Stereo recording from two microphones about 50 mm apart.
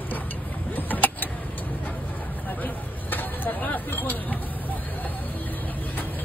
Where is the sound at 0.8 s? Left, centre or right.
Left.